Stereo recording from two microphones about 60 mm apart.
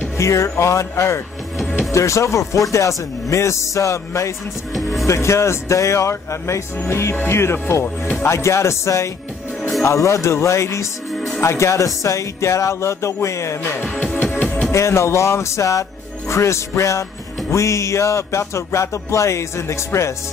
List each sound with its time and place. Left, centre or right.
0.2 s music: left
5.0 s speech: left
8.3 s speech: left
9.6 s music: centre
9.8 s speech: left
11.4 s music: left
14.1 s music: left
14.7 s speech: left
16.3 s music: left